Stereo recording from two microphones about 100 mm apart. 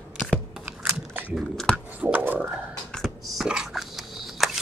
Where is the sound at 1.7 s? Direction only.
15° right (ahead or behind).